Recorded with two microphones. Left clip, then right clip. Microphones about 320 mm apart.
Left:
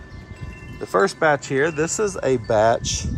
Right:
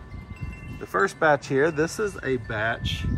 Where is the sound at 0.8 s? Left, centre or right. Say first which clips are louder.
Left 3 dB; centre.